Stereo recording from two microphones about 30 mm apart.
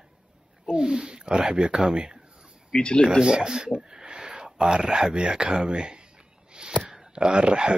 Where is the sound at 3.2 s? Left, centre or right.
Right.